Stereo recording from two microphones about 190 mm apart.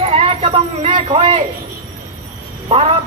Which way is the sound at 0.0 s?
30° right (ahead or behind).